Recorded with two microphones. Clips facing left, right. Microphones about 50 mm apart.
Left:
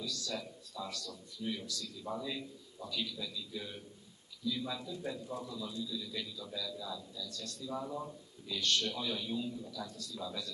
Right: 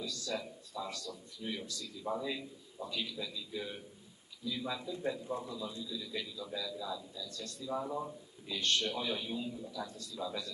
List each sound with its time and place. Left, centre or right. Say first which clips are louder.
0.1 s a man's voice: right 2 dB; centre